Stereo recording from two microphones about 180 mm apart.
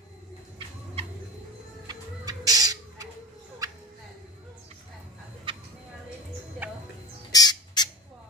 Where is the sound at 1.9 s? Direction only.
20° right (ahead or behind).